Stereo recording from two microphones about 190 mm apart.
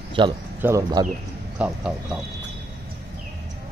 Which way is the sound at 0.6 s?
15° right (ahead or behind).